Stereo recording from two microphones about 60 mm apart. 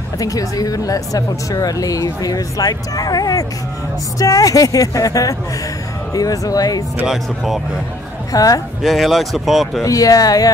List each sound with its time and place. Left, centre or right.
0.2 s speech: left
4.2 s speech: left
7.1 s speech: centre
8.3 s a woman's voice: left
8.8 s speech: centre
9.8 s speech: left